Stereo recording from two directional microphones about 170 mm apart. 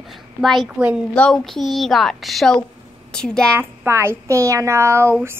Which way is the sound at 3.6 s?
15° right (ahead or behind).